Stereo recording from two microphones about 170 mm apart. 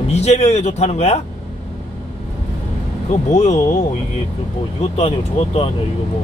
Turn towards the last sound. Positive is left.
turn(degrees=35)  # may be behind; listen again after turning